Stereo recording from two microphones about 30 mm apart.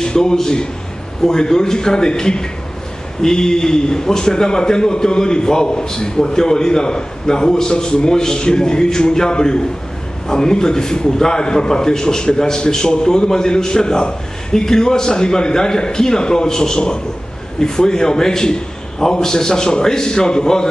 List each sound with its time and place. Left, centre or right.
0.0 s a man's voice: left
16.7 s a man's voice: left